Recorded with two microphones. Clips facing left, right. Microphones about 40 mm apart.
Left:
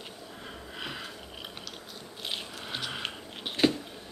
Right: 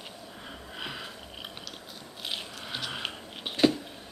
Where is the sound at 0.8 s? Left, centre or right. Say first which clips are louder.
Right 1 dB; centre.